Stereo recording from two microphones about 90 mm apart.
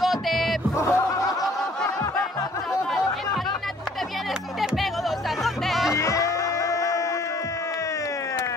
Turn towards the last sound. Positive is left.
turn(degrees=35)  # may be behind; listen again after turning